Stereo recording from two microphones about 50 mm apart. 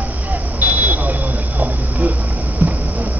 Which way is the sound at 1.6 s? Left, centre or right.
Right.